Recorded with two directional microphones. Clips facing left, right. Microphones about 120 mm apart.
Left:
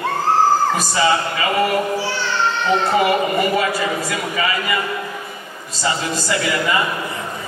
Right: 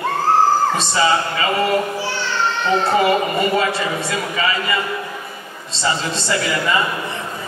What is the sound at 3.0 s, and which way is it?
A man's voice, 25° right (ahead or behind).